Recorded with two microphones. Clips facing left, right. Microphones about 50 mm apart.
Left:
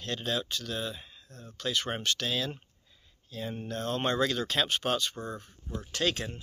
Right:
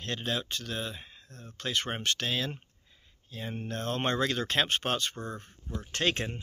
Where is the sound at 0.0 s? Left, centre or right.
Right.